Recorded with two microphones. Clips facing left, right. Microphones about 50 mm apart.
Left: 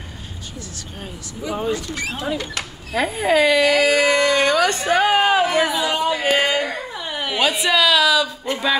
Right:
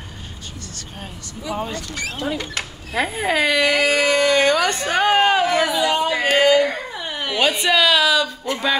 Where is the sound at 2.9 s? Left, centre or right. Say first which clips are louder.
Left 2 dB; centre.